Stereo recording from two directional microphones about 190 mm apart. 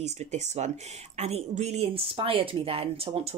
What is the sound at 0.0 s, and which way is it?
Speech, 35° right (ahead or behind).